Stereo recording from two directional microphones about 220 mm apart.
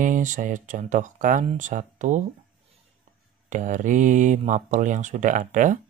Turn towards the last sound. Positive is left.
turn(degrees=-35)  # may be behind; listen again after turning